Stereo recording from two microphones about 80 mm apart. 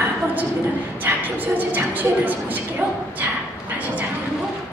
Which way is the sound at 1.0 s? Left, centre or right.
Right.